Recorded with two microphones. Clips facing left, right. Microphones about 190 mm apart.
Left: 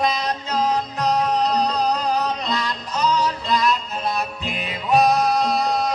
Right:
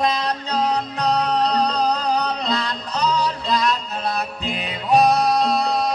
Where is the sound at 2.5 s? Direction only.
35° right (ahead or behind).